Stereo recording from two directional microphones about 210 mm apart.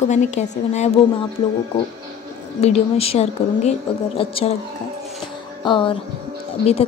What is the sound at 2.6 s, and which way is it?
A woman's voice, 30° left (ahead or behind).